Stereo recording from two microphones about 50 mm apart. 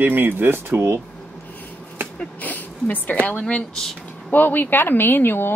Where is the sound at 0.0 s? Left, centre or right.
Right.